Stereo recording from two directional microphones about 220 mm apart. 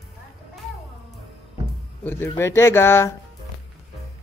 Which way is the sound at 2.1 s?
10° left (ahead or behind).